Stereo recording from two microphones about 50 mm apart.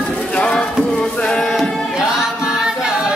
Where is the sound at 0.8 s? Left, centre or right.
Centre.